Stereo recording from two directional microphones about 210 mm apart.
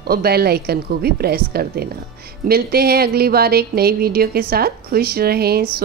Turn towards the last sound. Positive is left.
turn(degrees=-50)  # may be behind; listen again after turning